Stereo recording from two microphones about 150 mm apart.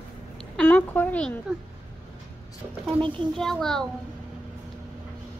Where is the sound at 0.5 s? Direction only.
10° left (ahead or behind).